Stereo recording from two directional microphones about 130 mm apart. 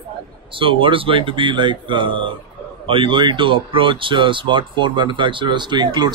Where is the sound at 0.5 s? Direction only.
40° right (ahead or behind).